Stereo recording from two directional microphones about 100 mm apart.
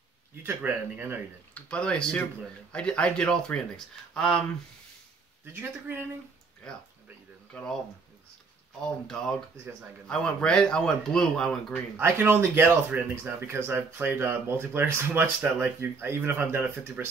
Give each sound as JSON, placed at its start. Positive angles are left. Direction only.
{"t": 0.4, "sound": "speech", "side_deg": -20}
{"t": 1.5, "sound": "speech", "side_deg": 10}
{"t": 5.4, "sound": "speech", "side_deg": -20}
{"t": 7.5, "sound": "speech", "side_deg": 5}
{"t": 9.0, "sound": "speech", "side_deg": 5}
{"t": 12.0, "sound": "speech", "side_deg": -20}